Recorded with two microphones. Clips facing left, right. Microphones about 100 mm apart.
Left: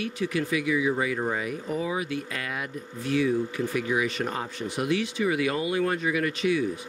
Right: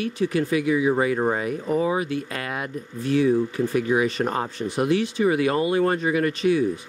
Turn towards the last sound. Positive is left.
turn(degrees=-40)  # may be behind; listen again after turning